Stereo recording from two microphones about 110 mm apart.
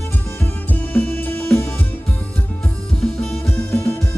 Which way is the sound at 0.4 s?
15° left (ahead or behind).